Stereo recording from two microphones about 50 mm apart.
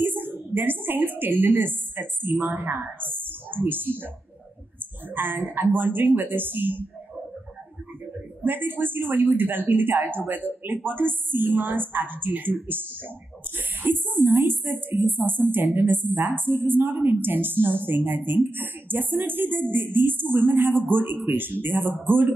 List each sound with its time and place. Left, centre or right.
0.0 s a woman's voice: right
5.1 s a woman's voice: right
8.4 s a woman's voice: right